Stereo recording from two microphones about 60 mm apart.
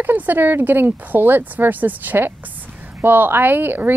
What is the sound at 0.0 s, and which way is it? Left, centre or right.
Speech, right.